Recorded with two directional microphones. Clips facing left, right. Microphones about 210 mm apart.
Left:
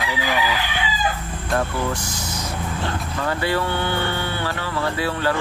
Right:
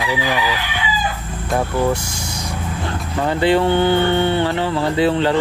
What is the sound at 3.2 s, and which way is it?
Speech, 20° right (ahead or behind).